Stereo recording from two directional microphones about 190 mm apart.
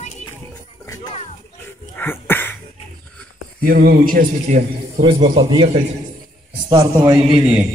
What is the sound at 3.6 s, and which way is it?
Speech, 50° right (ahead or behind).